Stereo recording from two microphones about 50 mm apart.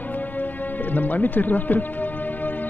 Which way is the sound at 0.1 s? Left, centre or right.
Left.